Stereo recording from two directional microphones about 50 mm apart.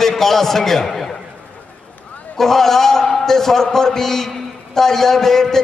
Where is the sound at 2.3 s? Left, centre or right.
Centre.